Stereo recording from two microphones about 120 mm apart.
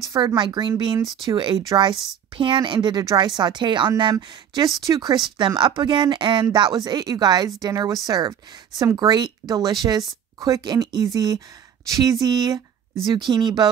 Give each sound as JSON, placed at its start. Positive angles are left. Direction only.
{"t": 0.1, "sound": "speech", "side_deg": -35}